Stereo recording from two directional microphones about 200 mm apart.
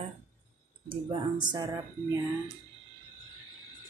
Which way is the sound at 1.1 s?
20° right (ahead or behind).